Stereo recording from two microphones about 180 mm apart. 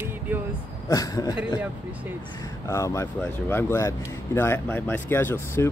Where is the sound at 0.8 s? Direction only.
20° left (ahead or behind).